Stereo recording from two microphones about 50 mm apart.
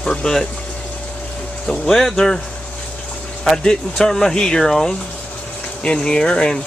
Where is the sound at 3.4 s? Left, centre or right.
Centre.